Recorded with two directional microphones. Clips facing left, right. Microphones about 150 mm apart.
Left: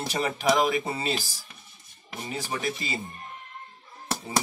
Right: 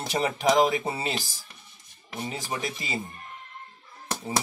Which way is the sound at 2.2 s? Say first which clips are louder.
Left 1 dB; 20° right (ahead or behind).